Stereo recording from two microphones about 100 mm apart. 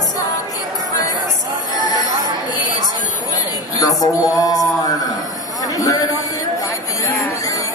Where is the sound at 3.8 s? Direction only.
35° left (ahead or behind).